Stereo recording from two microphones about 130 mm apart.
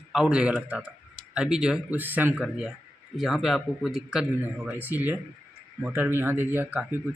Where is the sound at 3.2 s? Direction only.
Centre (ahead or behind).